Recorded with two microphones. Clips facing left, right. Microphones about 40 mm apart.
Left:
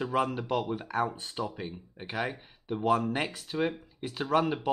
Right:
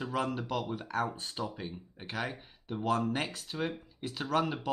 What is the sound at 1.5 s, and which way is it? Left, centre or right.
Speech, centre.